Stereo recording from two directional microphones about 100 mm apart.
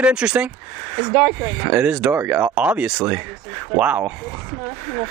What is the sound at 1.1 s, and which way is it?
Speech, 20° right (ahead or behind).